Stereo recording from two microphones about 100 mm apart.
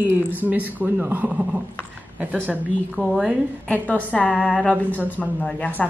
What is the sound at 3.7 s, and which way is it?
A woman's voice, 15° left (ahead or behind).